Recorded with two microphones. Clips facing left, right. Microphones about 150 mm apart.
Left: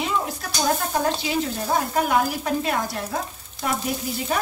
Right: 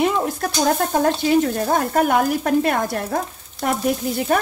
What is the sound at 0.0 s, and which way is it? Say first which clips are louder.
Stir: right 7 dB; 55° right (ahead or behind).